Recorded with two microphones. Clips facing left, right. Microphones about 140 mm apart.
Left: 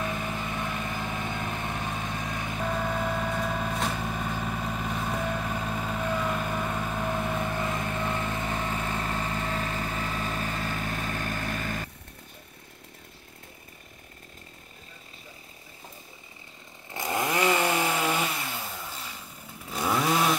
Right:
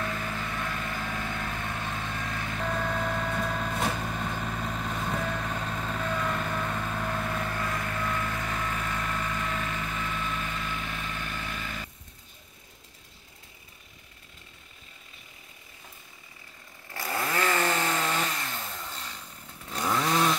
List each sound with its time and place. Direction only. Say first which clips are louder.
0.0 s vehicle: left 2 dB; 20° left (ahead or behind); by 11.9 s 45° left (ahead or behind)
16.9 s chainsaw: left 3 dB; 15° left (ahead or behind)